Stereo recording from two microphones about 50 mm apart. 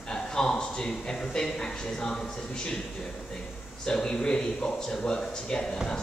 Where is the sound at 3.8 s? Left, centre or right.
Centre.